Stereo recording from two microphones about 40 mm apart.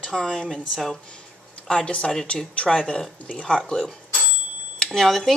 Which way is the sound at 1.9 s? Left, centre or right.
Left.